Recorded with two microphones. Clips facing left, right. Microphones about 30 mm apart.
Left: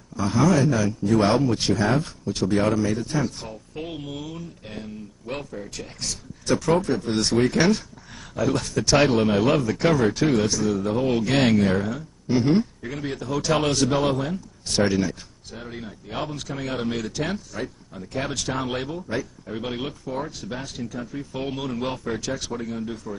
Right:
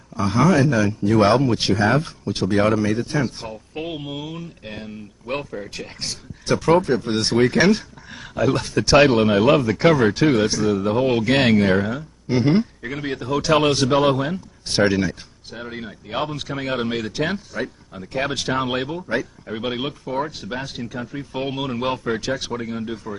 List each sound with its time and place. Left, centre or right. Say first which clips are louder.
0.1 s a sound: right 3 dB; right
0.4 s speech: right 3 dB; centre
0.7 s speech: right 3 dB; right
1.0 s speech: right 4 dB; right
1.3 s speech: right 3 dB; right
14.3 s speech: right 2 dB; right